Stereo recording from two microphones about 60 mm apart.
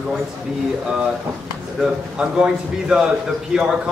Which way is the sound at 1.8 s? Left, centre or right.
Centre.